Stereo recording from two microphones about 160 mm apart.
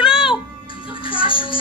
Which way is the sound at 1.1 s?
30° left (ahead or behind).